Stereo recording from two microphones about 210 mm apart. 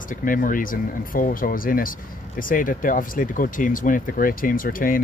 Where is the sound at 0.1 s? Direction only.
40° left (ahead or behind).